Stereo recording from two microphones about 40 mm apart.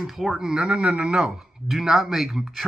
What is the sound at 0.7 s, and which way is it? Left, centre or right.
Speech, right.